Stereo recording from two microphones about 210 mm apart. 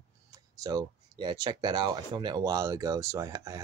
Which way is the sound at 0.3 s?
15° right (ahead or behind).